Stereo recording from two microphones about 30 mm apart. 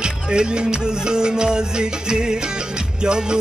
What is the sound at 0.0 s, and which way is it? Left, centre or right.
Music, right.